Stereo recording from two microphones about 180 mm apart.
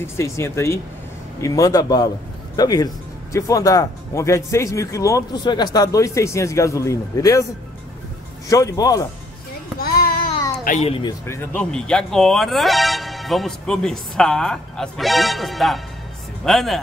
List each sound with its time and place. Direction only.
0.0 s a man's voice: 15° left (ahead or behind)
8.5 s a man's voice: 20° left (ahead or behind)
9.8 s child singing: 55° left (ahead or behind)
10.8 s a man's voice: 30° left (ahead or behind)
11.2 s speech: 15° left (ahead or behind)
11.7 s speech: 5° left (ahead or behind)